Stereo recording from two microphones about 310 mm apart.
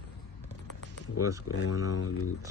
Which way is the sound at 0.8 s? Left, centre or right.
Left.